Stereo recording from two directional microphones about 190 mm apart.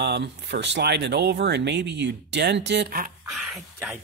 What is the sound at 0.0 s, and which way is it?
Speech, 65° right (ahead or behind).